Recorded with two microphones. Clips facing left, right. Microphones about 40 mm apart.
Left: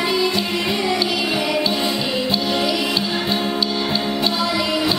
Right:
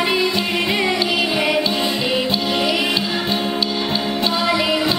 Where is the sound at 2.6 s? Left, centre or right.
Right.